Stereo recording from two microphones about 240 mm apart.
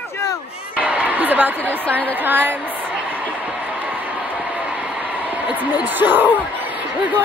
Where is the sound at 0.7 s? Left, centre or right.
Centre.